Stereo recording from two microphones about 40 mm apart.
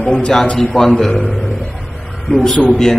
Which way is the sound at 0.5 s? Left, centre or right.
Centre.